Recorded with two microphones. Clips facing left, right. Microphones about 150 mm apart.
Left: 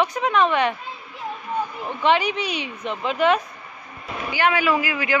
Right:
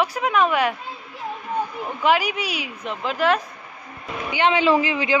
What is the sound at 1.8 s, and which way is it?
Speech, 5° right (ahead or behind).